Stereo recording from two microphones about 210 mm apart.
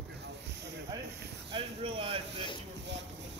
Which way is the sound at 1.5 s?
25° right (ahead or behind).